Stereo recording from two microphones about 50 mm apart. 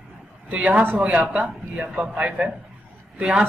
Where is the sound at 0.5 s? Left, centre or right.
Right.